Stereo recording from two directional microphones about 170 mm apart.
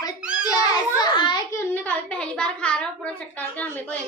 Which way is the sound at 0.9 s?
25° left (ahead or behind).